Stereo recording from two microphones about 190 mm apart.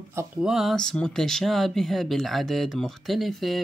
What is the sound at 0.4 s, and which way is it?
Speech, centre (ahead or behind).